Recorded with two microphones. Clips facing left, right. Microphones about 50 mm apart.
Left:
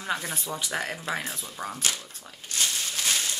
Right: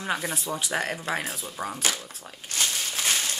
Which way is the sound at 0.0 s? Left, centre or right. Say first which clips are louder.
Right 2 dB; centre.